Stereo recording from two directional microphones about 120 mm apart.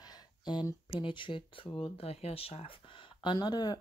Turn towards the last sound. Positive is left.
turn(degrees=35)  # may be behind; listen again after turning